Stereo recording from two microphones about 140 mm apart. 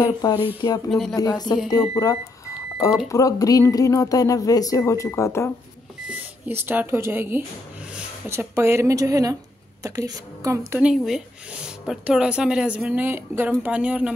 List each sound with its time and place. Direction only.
0.0 s speech: 30° left (ahead or behind)
0.8 s speech: centre (ahead or behind)
1.1 s speech: 30° left (ahead or behind)
6.0 s speech: 15° right (ahead or behind)
10.8 s speech: 5° right (ahead or behind)